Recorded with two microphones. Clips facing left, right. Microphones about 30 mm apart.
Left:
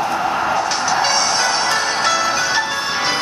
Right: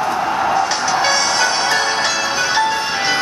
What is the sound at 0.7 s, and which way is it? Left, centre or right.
Music, right.